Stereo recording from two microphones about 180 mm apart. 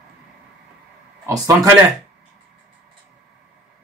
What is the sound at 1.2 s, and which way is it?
Speech, 20° right (ahead or behind).